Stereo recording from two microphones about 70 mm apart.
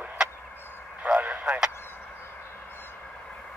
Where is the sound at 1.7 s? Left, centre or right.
Left.